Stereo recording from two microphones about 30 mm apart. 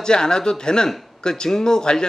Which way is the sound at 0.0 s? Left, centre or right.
Left.